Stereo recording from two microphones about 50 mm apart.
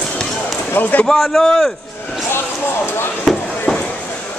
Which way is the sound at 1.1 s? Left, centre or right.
Centre.